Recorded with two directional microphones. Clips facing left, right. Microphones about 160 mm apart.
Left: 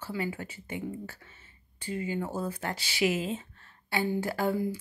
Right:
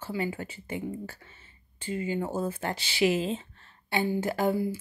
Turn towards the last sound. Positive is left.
turn(degrees=-20)  # may be behind; listen again after turning